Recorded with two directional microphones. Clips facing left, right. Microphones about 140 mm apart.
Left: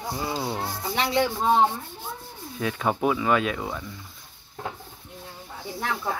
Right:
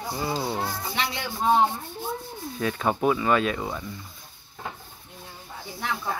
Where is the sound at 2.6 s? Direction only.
10° left (ahead or behind).